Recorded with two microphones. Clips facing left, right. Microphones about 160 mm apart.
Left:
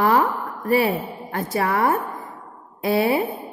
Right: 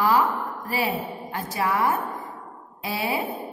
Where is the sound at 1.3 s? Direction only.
55° left (ahead or behind).